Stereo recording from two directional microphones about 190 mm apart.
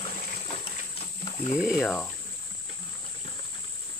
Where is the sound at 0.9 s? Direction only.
35° left (ahead or behind).